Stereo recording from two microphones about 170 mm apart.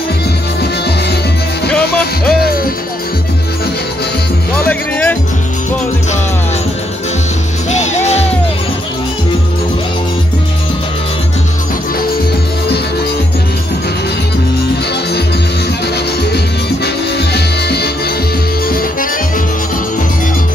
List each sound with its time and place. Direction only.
2.4 s music: 60° left (ahead or behind)
4.6 s music: 10° left (ahead or behind)
7.7 s music: 45° left (ahead or behind)
16.8 s music: 75° left (ahead or behind)
18.7 s accordion: 60° left (ahead or behind)